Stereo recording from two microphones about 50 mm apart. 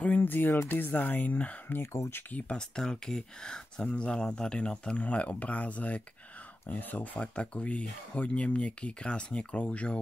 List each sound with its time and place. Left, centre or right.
0.0 s music: left
0.7 s speech: left
1.8 s speech: left
2.3 s speech: left
2.7 s speech: centre; by 7.1 s left
7.2 s speech: left